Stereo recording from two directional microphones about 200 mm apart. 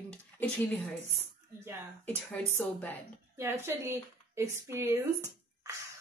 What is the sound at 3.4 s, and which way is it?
A woman's voice, 10° right (ahead or behind).